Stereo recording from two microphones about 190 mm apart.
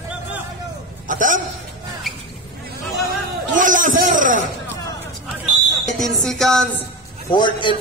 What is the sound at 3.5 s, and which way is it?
Speech, 45° right (ahead or behind).